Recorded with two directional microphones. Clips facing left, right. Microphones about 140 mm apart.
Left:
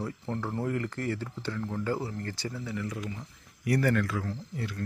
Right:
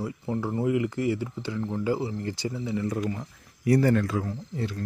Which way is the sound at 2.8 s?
45° right (ahead or behind).